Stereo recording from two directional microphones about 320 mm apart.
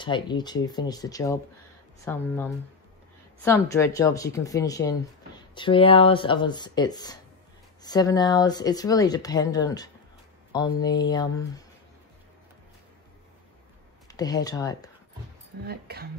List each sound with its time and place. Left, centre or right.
0.0 s speech: centre
14.0 s speech: centre
15.6 s speech: right